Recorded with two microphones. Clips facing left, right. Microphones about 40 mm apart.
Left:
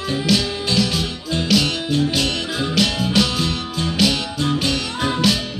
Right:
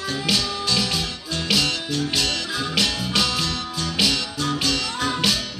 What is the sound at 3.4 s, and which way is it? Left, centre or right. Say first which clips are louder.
Music: left 3 dB; left.